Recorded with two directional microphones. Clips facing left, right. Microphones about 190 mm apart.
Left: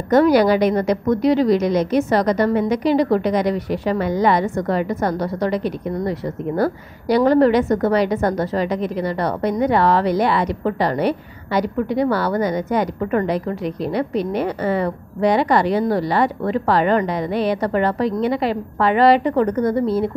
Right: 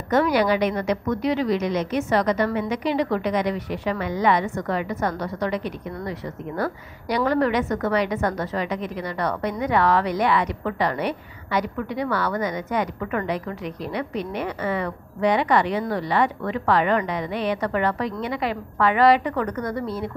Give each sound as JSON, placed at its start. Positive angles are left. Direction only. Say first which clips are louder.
{"t": 0.1, "sound": "a woman's voice", "louder": "left 6 dB", "side_deg": 40}